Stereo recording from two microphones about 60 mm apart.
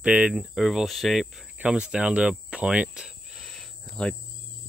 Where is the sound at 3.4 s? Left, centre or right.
Centre.